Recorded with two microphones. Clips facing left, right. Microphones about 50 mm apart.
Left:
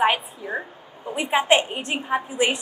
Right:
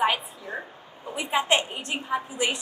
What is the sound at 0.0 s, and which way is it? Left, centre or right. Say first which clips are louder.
A woman's voice: left 4 dB; left.